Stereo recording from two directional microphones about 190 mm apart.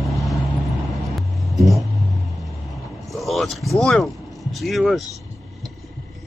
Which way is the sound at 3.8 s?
Centre (ahead or behind).